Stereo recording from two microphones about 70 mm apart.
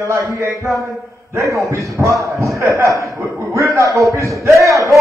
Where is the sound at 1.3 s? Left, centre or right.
Right.